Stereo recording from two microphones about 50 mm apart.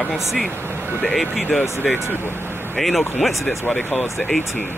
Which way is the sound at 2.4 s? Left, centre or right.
Right.